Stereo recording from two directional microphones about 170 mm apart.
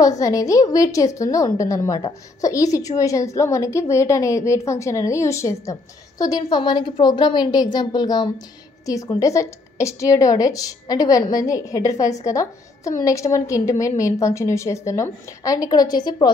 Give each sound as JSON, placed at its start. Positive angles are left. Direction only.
{"t": 0.0, "sound": "a woman's voice", "side_deg": 20}